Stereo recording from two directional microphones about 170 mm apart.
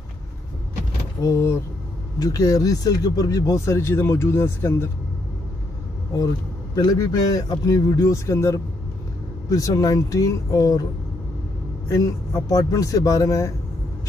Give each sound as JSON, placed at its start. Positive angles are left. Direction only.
{"t": 1.2, "sound": "speech", "side_deg": 15}
{"t": 6.1, "sound": "a man's voice", "side_deg": 20}
{"t": 11.9, "sound": "a man's voice", "side_deg": 20}